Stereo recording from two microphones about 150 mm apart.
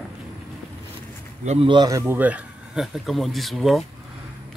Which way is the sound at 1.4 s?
45° right (ahead or behind).